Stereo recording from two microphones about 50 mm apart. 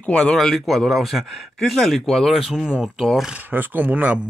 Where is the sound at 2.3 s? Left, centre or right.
Centre.